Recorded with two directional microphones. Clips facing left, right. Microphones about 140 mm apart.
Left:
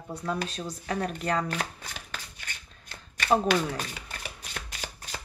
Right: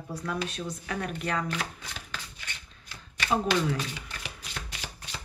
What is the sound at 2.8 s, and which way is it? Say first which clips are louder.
Shuffling cards: left 3 dB; 50° left (ahead or behind).